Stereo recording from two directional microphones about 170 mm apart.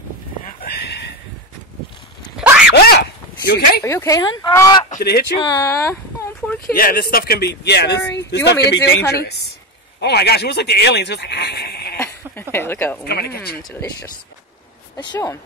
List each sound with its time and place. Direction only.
0.7 s a sound: 75° left (ahead or behind)
2.7 s a sound: 70° left (ahead or behind)
3.8 s speech: 15° left (ahead or behind)
5.0 s speech: 70° left (ahead or behind)
5.4 s speech: 20° left (ahead or behind)
6.6 s speech: 60° left (ahead or behind); by 8.0 s 80° left
8.1 s speech: 90° left
9.1 s speech: 75° left (ahead or behind)
12.0 s a sound: 15° left (ahead or behind)
13.0 s speech: 65° left (ahead or behind)
13.6 s speech: centre (ahead or behind)
15.0 s speech: 20° left (ahead or behind)